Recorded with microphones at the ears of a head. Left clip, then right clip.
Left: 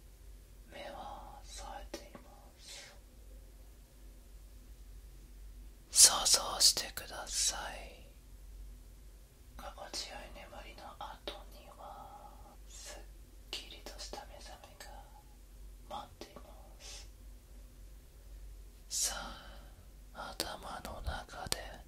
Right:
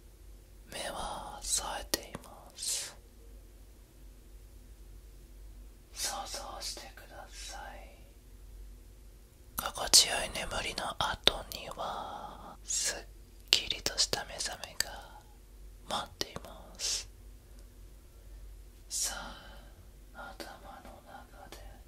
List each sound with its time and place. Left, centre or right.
0.7 s whispering: right
5.9 s whispering: left
9.6 s whispering: right
18.9 s a sound: centre
20.3 s whispering: left